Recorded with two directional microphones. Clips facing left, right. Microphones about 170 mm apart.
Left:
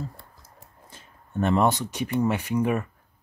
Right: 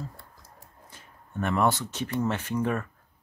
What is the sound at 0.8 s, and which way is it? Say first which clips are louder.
Speech: left 1 dB; 25° left (ahead or behind).